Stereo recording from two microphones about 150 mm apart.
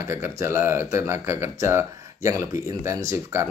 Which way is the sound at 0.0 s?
15° right (ahead or behind).